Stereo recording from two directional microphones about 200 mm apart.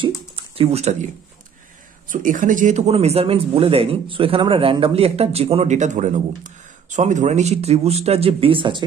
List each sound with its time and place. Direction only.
0.6 s speech: 30° right (ahead or behind)
2.0 s speech: 40° right (ahead or behind); by 8.8 s 25° right (ahead or behind)